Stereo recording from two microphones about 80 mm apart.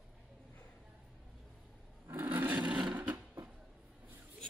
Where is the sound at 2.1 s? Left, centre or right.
Right.